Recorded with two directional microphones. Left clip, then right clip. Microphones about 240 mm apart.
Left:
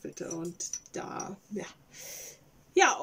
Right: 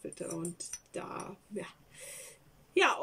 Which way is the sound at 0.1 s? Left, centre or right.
Centre.